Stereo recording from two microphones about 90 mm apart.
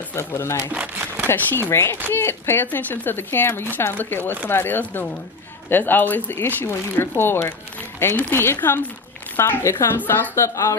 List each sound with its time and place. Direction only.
0.1 s speech: 30° left (ahead or behind)